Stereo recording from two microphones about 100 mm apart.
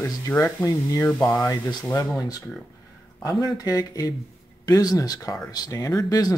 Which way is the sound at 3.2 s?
35° left (ahead or behind).